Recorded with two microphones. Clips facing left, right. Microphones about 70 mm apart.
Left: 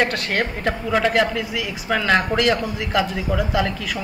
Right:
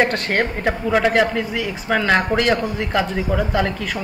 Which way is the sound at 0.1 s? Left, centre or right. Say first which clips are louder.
Right 3 dB; right.